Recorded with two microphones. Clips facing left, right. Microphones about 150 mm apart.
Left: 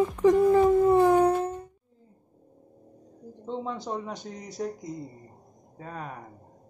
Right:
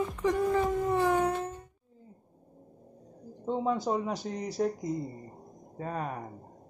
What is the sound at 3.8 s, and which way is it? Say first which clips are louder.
Speech: right 3 dB; 5° right (ahead or behind).